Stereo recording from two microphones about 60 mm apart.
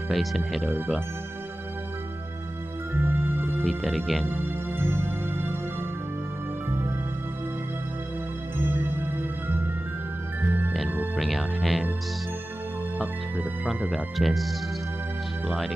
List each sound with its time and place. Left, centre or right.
0.1 s speech: centre
2.9 s music: right
3.6 s speech: centre
4.3 s music: right
8.5 s music: right
11.1 s music: centre
13.9 s speech: centre